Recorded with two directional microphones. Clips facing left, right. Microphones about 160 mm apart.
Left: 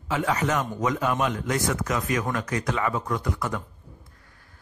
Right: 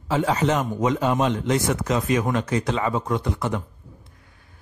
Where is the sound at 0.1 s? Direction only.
30° right (ahead or behind).